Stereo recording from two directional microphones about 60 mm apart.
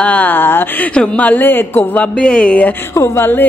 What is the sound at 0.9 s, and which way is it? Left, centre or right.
Speech, centre.